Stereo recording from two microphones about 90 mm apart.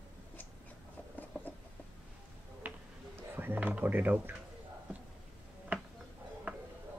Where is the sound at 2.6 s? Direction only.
20° right (ahead or behind).